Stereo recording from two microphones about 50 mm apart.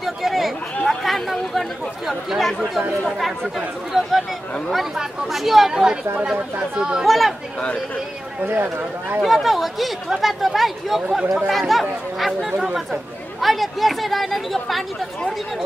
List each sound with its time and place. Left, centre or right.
0.0 s chatter: centre
3.1 s speech: centre
7.0 s speech: centre
8.5 s speech: right
9.2 s speech: centre